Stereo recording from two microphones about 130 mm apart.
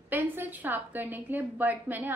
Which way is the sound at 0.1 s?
15° right (ahead or behind).